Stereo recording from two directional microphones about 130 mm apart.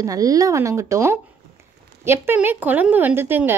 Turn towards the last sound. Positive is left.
turn(degrees=-15)  # may be behind; listen again after turning